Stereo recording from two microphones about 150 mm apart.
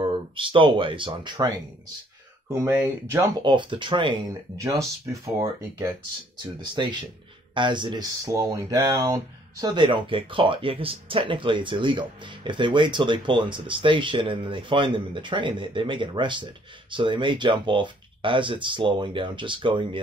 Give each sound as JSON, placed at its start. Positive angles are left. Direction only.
{"t": 0.0, "sound": "speech", "side_deg": -35}
{"t": 2.4, "sound": "speech", "side_deg": -20}
{"t": 3.3, "sound": "speech", "side_deg": -30}
{"t": 4.3, "sound": "speech", "side_deg": -20}
{"t": 6.4, "sound": "speech", "side_deg": -30}
{"t": 8.3, "sound": "speech", "side_deg": -20}